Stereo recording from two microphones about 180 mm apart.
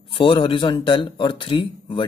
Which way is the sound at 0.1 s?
30° left (ahead or behind).